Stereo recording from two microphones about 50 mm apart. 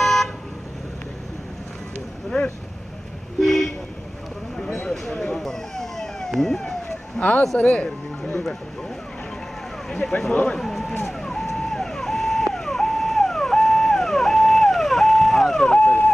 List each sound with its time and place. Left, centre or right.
0.0 s vehicle: centre
3.4 s vehicle: centre
4.6 s a sound: centre
5.1 s vehicle: centre
7.2 s a man's voice: left
9.8 s a sound: centre